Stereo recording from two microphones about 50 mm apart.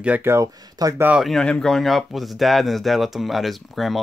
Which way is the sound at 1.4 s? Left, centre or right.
Centre.